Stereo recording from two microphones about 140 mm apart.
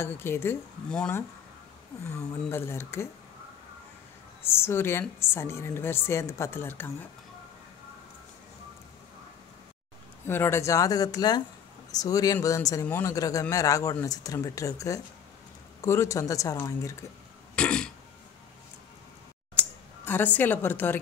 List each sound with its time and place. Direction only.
0.0 s a woman's voice: 15° left (ahead or behind)
0.8 s speech: 5° left (ahead or behind)
2.0 s speech: 20° left (ahead or behind)
4.4 s a woman's voice: 15° left (ahead or behind)
10.2 s speech: 15° left (ahead or behind)
17.6 s throat clearing: 5° left (ahead or behind)
20.1 s a woman's voice: 15° left (ahead or behind)